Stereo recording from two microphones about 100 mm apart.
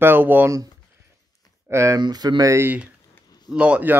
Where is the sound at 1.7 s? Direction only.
30° right (ahead or behind).